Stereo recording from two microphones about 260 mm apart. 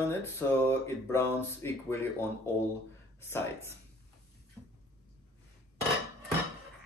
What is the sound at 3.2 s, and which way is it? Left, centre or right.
Speech, centre.